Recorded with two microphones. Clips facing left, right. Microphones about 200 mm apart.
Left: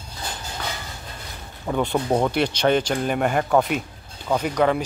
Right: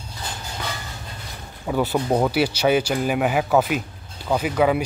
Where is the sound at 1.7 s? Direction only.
5° right (ahead or behind).